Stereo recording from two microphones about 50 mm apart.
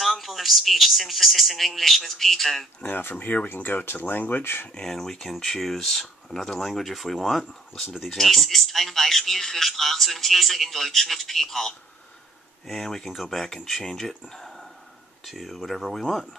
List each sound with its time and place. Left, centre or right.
0.0 s speech: centre
2.8 s speech: left
4.7 s speech: centre
14.3 s a sound: centre
15.2 s speech: centre